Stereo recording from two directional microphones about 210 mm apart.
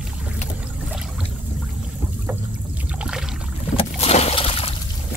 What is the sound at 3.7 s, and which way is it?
Boat, 30° left (ahead or behind).